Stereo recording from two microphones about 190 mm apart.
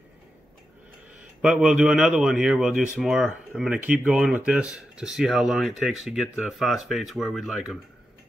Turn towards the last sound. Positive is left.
turn(degrees=-5)  # may be behind; listen again after turning